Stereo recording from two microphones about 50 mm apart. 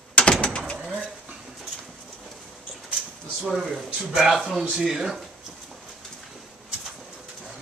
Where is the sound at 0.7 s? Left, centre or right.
Centre.